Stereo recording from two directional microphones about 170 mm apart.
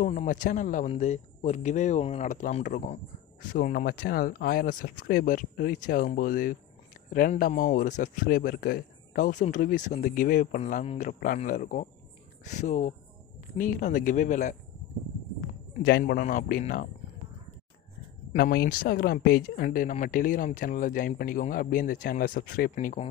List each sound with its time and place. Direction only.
0.0 s speech: 50° left (ahead or behind)
3.5 s speech: 55° left (ahead or behind)
15.8 s a man's voice: 70° left (ahead or behind)
16.2 s speech: 50° left (ahead or behind)
18.3 s speech: 65° left (ahead or behind)